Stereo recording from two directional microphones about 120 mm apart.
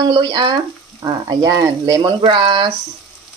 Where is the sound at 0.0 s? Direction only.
40° right (ahead or behind).